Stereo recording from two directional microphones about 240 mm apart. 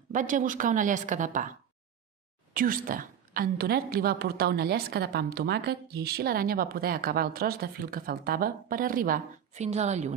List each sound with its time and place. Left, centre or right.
0.1 s a woman's voice: right
2.5 s a woman's voice: right